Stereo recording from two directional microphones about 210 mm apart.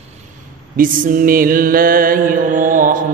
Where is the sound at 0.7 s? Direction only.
40° right (ahead or behind).